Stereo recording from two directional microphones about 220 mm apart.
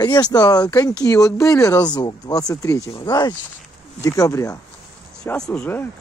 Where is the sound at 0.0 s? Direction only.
20° left (ahead or behind).